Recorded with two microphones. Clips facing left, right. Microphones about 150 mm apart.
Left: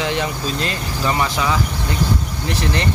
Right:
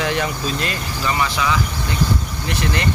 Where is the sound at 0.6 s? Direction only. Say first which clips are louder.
Left 2 dB; 30° left (ahead or behind).